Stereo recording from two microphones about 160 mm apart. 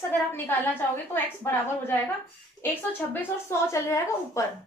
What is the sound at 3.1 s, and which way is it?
A woman's voice, 20° left (ahead or behind).